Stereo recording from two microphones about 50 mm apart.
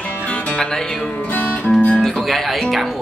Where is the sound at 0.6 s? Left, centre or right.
Centre.